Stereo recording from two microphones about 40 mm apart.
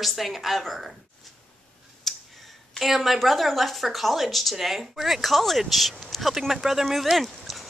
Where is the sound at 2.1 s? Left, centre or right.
Centre.